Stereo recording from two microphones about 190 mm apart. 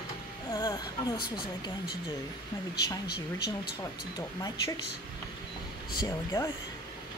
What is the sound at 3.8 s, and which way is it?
Speech, 20° left (ahead or behind).